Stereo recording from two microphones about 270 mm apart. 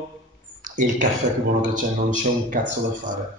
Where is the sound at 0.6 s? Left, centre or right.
Right.